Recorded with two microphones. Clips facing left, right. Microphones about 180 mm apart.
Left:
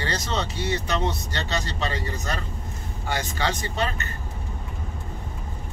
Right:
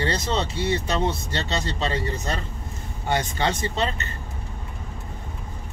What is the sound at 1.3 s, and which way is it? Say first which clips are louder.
Speech: right 2 dB; 25° right (ahead or behind).